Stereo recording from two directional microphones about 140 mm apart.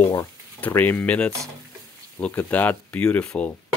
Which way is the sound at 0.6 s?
15° left (ahead or behind).